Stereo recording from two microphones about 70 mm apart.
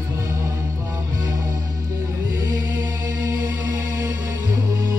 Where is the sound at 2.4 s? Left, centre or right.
Right.